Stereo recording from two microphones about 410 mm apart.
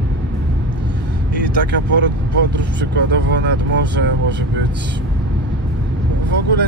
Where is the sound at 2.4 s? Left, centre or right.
Right.